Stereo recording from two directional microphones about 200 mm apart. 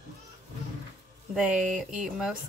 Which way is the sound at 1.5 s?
40° right (ahead or behind).